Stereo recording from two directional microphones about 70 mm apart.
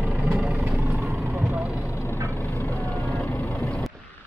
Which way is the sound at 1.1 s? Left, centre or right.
Right.